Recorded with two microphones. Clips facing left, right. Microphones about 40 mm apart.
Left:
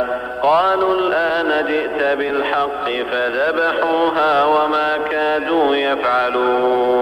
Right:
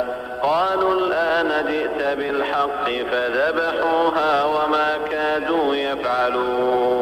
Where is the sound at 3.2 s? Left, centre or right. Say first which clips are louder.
Left 3 dB; centre.